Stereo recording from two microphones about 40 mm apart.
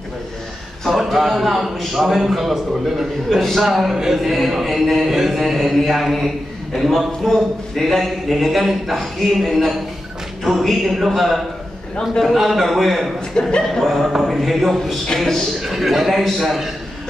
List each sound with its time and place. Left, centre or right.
0.8 s a man's voice: centre
13.4 s speech: centre
13.8 s a man's voice: centre
15.6 s a man's voice: centre